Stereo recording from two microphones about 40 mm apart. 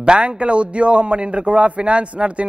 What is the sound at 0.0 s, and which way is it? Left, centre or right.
A man's voice, right.